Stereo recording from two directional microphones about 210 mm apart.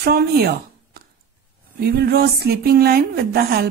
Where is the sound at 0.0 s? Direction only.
50° right (ahead or behind).